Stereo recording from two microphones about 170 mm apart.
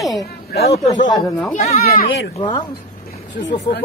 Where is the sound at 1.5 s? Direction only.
45° left (ahead or behind).